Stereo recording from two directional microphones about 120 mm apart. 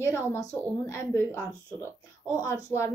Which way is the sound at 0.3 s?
25° left (ahead or behind).